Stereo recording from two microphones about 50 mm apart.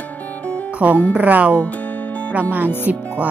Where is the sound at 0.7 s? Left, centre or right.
Right.